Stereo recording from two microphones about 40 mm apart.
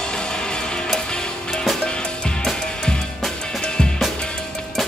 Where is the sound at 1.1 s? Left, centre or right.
Left.